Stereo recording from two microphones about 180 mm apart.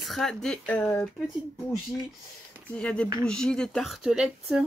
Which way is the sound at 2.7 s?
5° left (ahead or behind).